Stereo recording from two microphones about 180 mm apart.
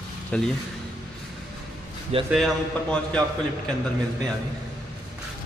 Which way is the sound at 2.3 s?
5° left (ahead or behind).